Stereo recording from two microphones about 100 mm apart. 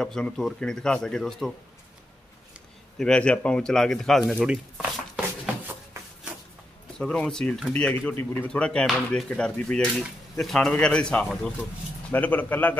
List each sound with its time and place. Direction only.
0.0 s a man's voice: 5° left (ahead or behind)
3.0 s a man's voice: 10° left (ahead or behind); by 5.2 s 5° right (ahead or behind)
7.0 s a man's voice: 10° left (ahead or behind)
8.2 s speech: 25° left (ahead or behind)
8.5 s a man's voice: 10° left (ahead or behind)